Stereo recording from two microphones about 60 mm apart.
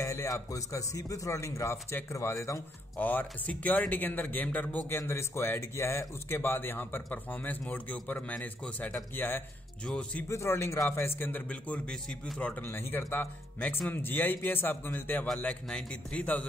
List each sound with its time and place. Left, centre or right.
0.0 s speech: left
3.0 s a man's voice: left
4.8 s speech: left
7.1 s a man's voice: left
10.2 s speech: left
10.5 s speech: left
11.4 s a man's voice: left
12.6 s speech: left
15.4 s a man's voice: centre